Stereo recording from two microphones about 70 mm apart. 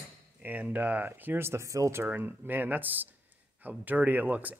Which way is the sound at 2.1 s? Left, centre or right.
Right.